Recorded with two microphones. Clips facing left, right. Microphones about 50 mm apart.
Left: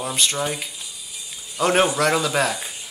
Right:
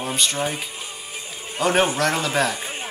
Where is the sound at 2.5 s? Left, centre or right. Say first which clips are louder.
Right 3 dB; right.